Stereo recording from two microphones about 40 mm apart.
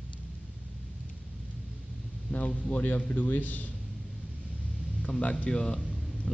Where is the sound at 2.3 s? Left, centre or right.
Left.